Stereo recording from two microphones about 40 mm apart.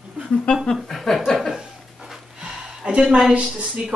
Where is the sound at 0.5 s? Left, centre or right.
Left.